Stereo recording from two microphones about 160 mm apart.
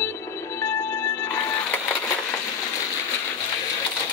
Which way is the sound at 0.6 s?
15° left (ahead or behind).